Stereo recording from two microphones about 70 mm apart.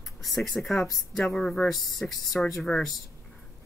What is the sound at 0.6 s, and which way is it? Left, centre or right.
Speech, centre.